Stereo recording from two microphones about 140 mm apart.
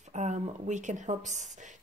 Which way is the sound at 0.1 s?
55° right (ahead or behind).